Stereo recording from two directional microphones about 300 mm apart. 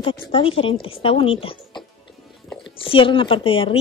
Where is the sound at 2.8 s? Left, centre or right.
Centre.